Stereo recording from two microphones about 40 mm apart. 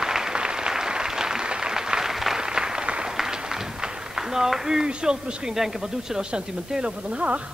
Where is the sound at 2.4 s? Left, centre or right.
Centre.